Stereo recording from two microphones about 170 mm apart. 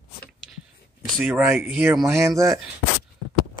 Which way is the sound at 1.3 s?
10° right (ahead or behind).